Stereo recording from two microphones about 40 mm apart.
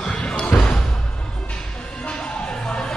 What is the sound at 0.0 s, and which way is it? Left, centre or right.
Basketball bounce, centre.